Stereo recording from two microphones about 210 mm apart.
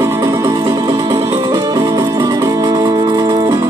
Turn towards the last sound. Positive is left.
turn(degrees=-15)  # may be behind; listen again after turning